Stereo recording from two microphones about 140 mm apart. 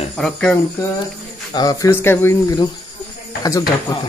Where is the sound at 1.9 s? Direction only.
15° left (ahead or behind).